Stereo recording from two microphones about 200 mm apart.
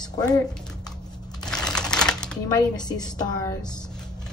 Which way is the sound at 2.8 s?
20° left (ahead or behind).